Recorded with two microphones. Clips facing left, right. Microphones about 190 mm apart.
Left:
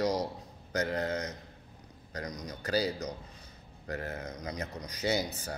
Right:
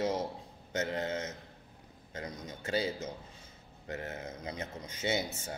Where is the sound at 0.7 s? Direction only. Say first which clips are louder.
Left 2 dB; 25° right (ahead or behind).